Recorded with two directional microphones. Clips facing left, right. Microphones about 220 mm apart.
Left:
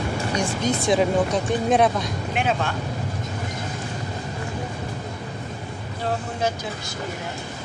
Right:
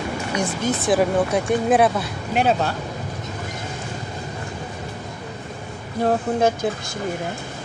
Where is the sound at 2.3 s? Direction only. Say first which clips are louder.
Right 5 dB; 40° right (ahead or behind).